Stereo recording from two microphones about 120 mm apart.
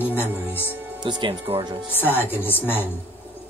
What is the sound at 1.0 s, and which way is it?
Speech, 40° right (ahead or behind).